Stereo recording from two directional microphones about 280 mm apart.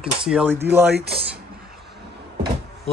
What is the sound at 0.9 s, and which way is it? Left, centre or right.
Speech, right.